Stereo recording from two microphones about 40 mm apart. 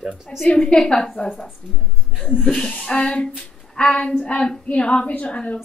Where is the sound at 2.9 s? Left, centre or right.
Left.